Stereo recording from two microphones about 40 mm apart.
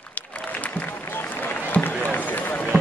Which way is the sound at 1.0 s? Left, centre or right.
Left.